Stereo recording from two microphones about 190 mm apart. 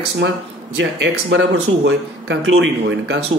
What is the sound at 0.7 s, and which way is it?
Speech, 75° right (ahead or behind).